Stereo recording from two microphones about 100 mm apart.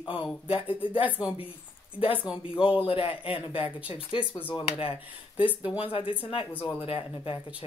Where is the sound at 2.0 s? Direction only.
65° left (ahead or behind).